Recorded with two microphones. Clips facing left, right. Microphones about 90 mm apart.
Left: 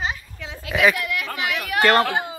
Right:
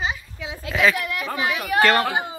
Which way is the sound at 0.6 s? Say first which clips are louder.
Left 1 dB; 15° left (ahead or behind).